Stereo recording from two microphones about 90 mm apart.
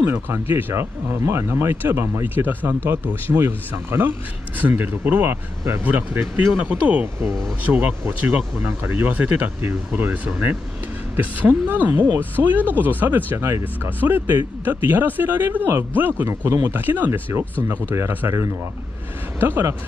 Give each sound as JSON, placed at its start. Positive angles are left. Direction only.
{"t": 0.0, "sound": "speech", "side_deg": -25}